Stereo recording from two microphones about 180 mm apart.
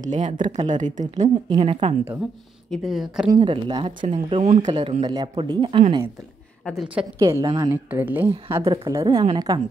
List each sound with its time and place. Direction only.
0.0 s speech: 40° right (ahead or behind)
1.6 s speech: 30° right (ahead or behind)
2.7 s speech: centre (ahead or behind)
3.3 s speech: 25° right (ahead or behind)
6.6 s speech: centre (ahead or behind)
7.2 s a woman's voice: 20° right (ahead or behind)
8.7 s speech: 20° right (ahead or behind)